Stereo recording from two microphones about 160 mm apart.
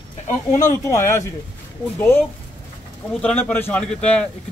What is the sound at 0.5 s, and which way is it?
Speech, 50° left (ahead or behind).